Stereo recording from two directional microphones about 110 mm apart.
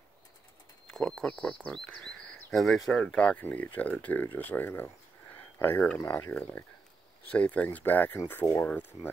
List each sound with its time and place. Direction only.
0.8 s speech: 5° left (ahead or behind)